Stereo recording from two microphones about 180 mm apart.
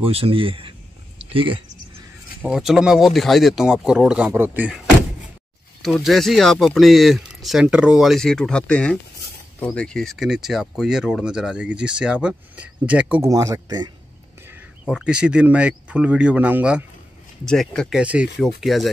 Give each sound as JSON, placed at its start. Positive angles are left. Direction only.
{"t": 0.0, "sound": "speech", "side_deg": -30}
{"t": 2.4, "sound": "speech", "side_deg": -5}
{"t": 14.5, "sound": "speech", "side_deg": -5}